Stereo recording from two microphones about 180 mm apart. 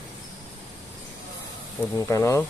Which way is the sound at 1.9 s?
15° left (ahead or behind).